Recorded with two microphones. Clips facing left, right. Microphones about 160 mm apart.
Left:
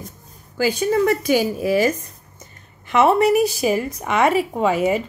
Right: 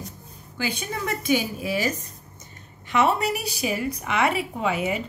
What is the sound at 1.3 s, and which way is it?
A woman's voice, 40° left (ahead or behind).